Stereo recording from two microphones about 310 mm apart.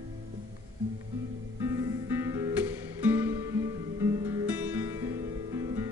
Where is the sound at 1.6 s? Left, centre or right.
Centre.